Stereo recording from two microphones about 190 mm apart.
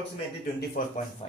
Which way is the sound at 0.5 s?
50° left (ahead or behind).